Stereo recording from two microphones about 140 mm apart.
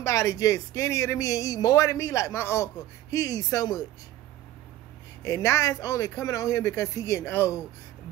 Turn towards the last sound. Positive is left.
turn(degrees=20)  # may be behind; listen again after turning